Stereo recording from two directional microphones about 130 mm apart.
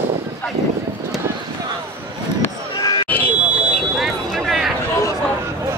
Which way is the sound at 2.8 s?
30° left (ahead or behind).